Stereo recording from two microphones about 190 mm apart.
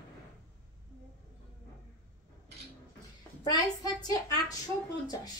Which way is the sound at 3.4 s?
20° left (ahead or behind).